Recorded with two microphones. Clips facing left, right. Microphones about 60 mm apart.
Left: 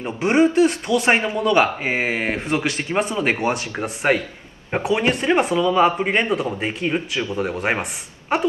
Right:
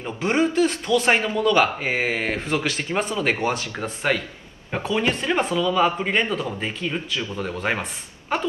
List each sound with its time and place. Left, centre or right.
0.2 s speech: left